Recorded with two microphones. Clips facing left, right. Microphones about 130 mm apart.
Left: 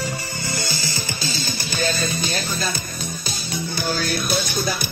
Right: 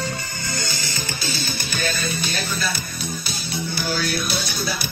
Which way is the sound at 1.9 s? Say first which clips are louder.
Left 2 dB; 35° left (ahead or behind).